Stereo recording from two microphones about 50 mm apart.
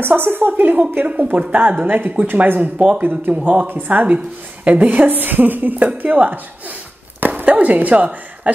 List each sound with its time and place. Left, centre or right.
0.0 s a woman's voice: right
1.0 s a woman's voice: right
2.6 s a woman's voice: right
3.0 s a woman's voice: right
3.6 s a woman's voice: right
4.6 s a woman's voice: right